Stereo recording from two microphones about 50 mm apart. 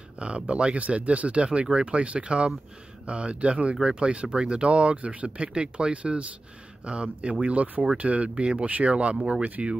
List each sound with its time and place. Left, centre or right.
0.2 s speech: right